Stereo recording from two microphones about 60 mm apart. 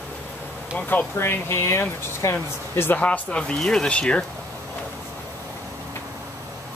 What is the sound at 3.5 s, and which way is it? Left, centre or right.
Speech, centre.